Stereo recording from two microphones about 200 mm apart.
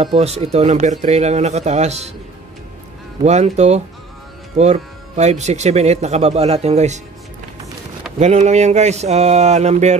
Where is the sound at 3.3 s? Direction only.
35° right (ahead or behind).